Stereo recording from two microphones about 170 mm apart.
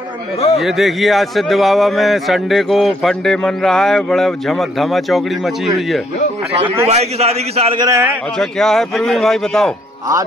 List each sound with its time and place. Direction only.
0.6 s speech: centre (ahead or behind)
6.9 s a man's voice: 40° right (ahead or behind)
7.8 s a man's voice: 15° right (ahead or behind)
8.4 s speech: centre (ahead or behind)